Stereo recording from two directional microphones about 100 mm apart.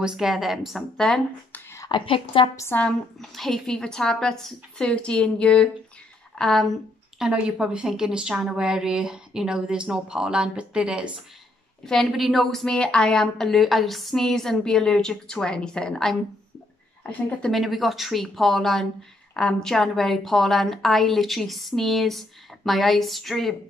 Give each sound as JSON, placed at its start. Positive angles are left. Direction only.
{"t": 0.0, "sound": "a woman's voice", "side_deg": -5}
{"t": 1.5, "sound": "a sound", "side_deg": 25}
{"t": 1.9, "sound": "a woman's voice", "side_deg": 55}
{"t": 2.7, "sound": "speech", "side_deg": 20}
{"t": 3.2, "sound": "a woman's voice", "side_deg": 5}
{"t": 7.2, "sound": "a woman's voice", "side_deg": -10}
{"t": 11.8, "sound": "a woman's voice", "side_deg": 5}
{"t": 17.5, "sound": "a woman's voice", "side_deg": 0}